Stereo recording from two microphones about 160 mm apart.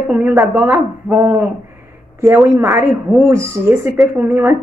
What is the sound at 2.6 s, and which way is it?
Speech, 15° right (ahead or behind).